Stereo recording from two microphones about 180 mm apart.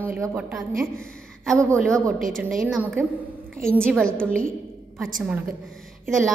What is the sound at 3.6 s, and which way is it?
Speech, 5° left (ahead or behind).